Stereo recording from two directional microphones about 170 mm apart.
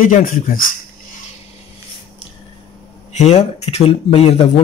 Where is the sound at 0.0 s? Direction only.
50° left (ahead or behind).